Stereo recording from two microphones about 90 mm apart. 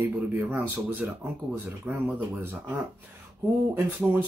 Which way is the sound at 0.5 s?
20° right (ahead or behind).